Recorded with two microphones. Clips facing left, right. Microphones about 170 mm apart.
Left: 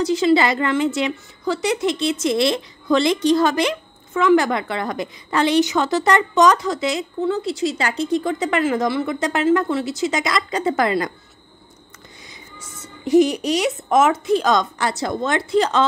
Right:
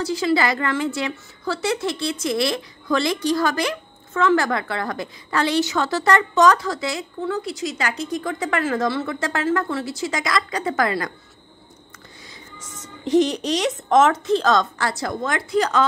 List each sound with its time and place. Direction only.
0.0 s a woman's voice: 20° left (ahead or behind)
12.5 s a woman's voice: 10° left (ahead or behind); by 15.9 s 25° left (ahead or behind)